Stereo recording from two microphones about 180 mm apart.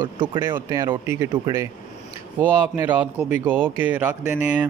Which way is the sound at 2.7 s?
10° right (ahead or behind).